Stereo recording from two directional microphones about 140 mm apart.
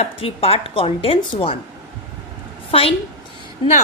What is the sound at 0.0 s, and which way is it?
Speech, 45° left (ahead or behind).